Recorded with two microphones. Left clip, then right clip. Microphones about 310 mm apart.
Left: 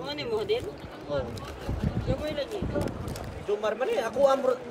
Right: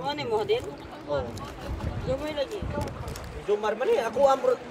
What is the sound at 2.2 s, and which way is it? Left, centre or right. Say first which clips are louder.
Speech: right 1 dB; right.